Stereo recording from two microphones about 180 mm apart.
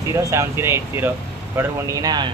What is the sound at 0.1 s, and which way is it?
Speech, 15° right (ahead or behind).